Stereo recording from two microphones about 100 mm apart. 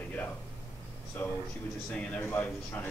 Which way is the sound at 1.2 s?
20° left (ahead or behind).